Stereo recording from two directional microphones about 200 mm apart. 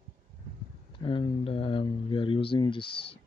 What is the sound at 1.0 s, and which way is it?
Speech, 25° left (ahead or behind).